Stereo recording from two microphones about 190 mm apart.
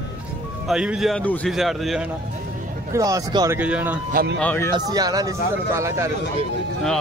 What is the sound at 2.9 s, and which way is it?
Speech, 20° right (ahead or behind).